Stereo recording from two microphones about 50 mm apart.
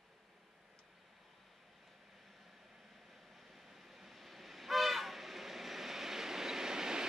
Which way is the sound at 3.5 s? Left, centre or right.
Centre.